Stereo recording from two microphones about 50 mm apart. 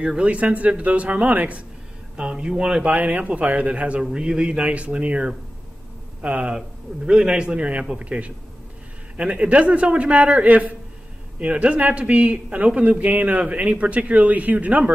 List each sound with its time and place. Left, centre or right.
0.0 s a man's voice: right
2.1 s a man's voice: right
2.9 s a man's voice: right
7.1 s a man's voice: centre